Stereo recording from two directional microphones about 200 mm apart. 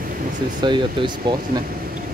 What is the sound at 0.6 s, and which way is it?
Speech, 25° right (ahead or behind).